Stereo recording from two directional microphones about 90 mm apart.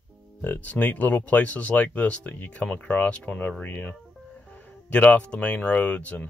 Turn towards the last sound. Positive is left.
turn(degrees=15)  # may be behind; listen again after turning